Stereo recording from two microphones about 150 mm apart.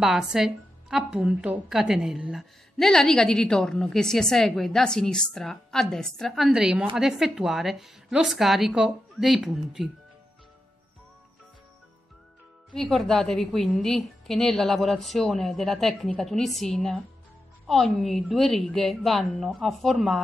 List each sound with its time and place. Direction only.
0.0 s a woman's voice: 5° right (ahead or behind)
12.7 s a woman's voice: 5° left (ahead or behind)